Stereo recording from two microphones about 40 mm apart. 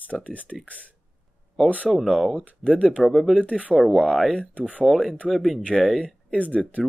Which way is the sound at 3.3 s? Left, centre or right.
Left.